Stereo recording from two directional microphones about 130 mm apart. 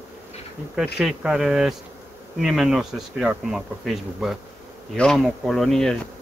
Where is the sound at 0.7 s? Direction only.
5° right (ahead or behind).